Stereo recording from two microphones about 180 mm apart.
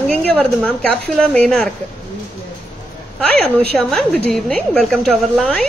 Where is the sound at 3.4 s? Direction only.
Centre (ahead or behind).